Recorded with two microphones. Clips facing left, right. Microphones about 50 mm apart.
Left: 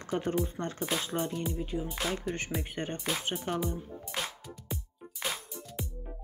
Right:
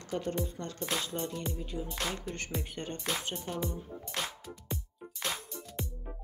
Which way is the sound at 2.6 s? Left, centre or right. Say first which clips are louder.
Left 3 dB; left.